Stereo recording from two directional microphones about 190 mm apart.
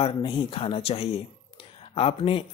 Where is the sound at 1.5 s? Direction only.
30° left (ahead or behind).